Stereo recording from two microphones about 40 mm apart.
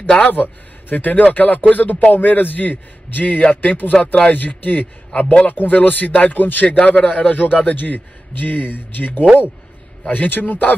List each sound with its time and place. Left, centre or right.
0.3 s a man's voice: left
3.9 s speech: left
4.3 s a man's voice: left